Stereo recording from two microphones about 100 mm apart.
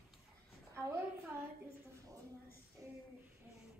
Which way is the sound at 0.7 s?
25° right (ahead or behind).